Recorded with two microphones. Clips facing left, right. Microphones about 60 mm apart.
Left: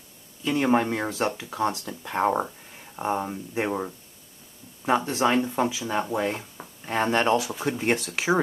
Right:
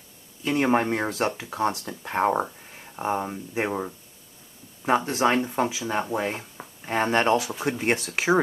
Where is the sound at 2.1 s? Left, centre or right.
Centre.